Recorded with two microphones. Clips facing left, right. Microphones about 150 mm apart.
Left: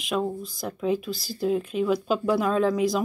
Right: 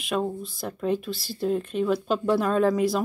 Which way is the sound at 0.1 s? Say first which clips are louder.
Even; centre (ahead or behind).